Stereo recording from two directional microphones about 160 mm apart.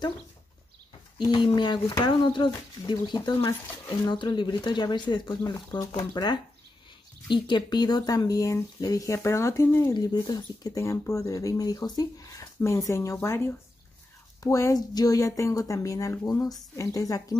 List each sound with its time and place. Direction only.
1.1 s speech: 30° left (ahead or behind)
7.4 s speech: 25° left (ahead or behind)